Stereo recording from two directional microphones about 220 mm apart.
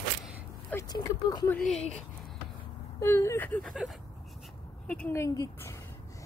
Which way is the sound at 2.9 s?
10° left (ahead or behind).